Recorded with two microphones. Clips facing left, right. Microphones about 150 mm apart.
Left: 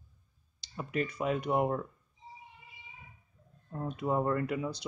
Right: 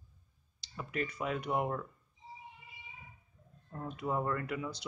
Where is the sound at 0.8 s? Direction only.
30° left (ahead or behind).